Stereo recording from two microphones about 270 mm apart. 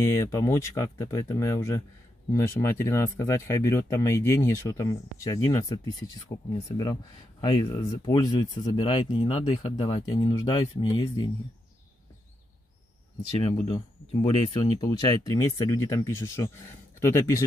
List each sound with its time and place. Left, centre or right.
0.0 s speech: centre
13.4 s speech: centre